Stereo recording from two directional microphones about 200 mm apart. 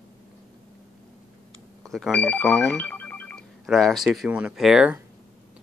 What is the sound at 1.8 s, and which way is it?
Speech, centre (ahead or behind).